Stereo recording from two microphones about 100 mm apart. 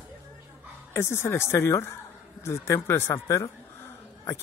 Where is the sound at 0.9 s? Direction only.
25° left (ahead or behind).